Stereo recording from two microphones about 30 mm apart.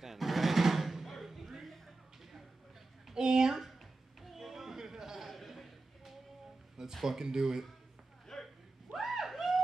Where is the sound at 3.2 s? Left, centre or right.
Centre.